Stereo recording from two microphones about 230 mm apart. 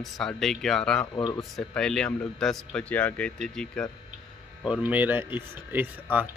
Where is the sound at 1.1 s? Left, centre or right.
Centre.